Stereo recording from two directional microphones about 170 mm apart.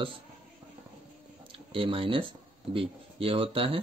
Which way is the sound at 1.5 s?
30° right (ahead or behind).